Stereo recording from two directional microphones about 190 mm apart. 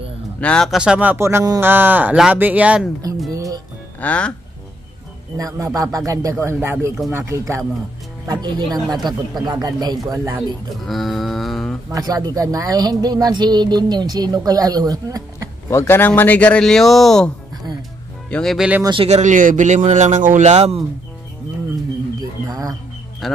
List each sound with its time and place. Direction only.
0.4 s speech: 5° left (ahead or behind)
3.3 s music: 20° right (ahead or behind)
4.0 s speech: 5° left (ahead or behind)
5.4 s speech: 15° right (ahead or behind)
8.6 s speech: centre (ahead or behind)
9.0 s speech: 20° right (ahead or behind)
10.9 s a sound: centre (ahead or behind)
11.9 s speech: 20° right (ahead or behind)
15.7 s speech: 15° left (ahead or behind)
18.3 s speech: centre (ahead or behind)
18.8 s speech: 25° right (ahead or behind)
19.0 s speech: 35° right (ahead or behind)
22.5 s a sound: 20° right (ahead or behind)
23.2 s speech: centre (ahead or behind)